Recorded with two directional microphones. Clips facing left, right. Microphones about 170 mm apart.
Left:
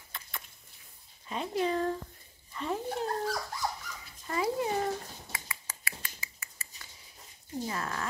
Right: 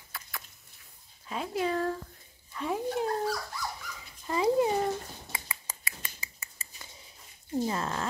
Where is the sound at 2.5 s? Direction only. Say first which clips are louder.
Right 3 dB; 5° right (ahead or behind).